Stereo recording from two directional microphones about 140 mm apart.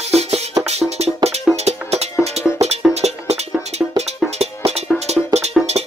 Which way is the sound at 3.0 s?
50° right (ahead or behind).